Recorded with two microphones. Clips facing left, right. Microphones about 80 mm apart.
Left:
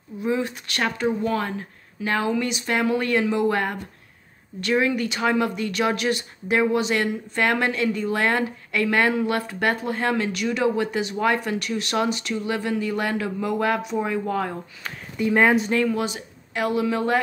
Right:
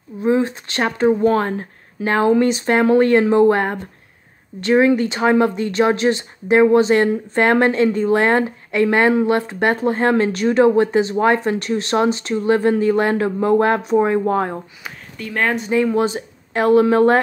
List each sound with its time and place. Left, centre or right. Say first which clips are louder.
0.2 s speech: right 7 dB; right
15.1 s speech: left 3 dB; centre
15.9 s speech: right 7 dB; right